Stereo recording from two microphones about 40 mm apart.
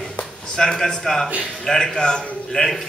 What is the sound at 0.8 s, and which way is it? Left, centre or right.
A man's voice, centre.